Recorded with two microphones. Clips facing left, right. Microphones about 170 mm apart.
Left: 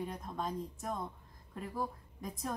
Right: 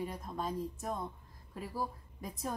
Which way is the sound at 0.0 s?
5° right (ahead or behind).